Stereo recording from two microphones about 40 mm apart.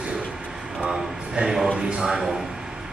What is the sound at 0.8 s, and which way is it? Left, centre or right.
Speech, centre.